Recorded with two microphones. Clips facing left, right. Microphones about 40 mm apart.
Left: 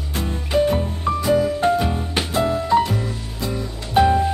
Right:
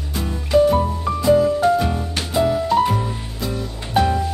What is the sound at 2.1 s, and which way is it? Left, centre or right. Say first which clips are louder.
Music: right 2 dB; centre.